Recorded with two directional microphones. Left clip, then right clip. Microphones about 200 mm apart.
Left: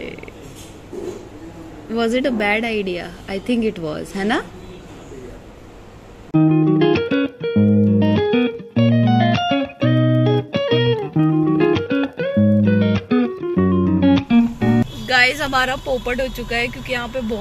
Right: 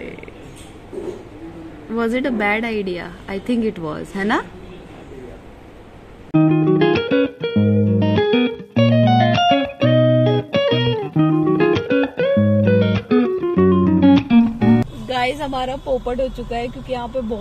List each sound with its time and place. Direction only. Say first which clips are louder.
2.0 s a woman's voice: left 1 dB; 5° right (ahead or behind)
6.3 s music: even; centre (ahead or behind)
16.4 s speech: left 3 dB; 10° left (ahead or behind)
16.8 s speech: left 1 dB; 45° left (ahead or behind)